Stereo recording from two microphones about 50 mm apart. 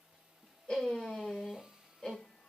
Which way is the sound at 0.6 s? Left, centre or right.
Centre.